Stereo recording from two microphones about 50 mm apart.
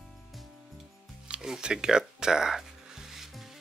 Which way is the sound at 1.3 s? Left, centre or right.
Centre.